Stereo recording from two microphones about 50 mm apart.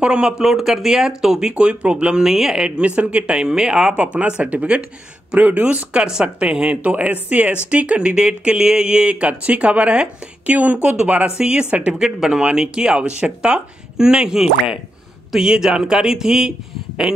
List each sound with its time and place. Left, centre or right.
0.0 s speech: centre
1.5 s speech: right
2.2 s speech: centre
3.0 s speech: right
3.9 s speech: right
5.9 s speech: centre; by 11.3 s right
11.3 s speech: centre